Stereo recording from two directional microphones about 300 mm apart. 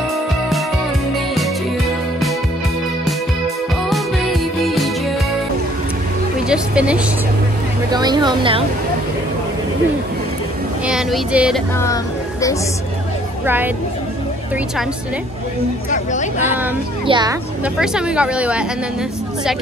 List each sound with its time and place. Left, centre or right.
3.9 s music: centre
6.5 s a sound: centre
7.9 s speech: centre
10.9 s a woman's voice: centre
11.8 s speech: centre
15.9 s speech: left
17.0 s speech: centre
17.7 s a woman's voice: centre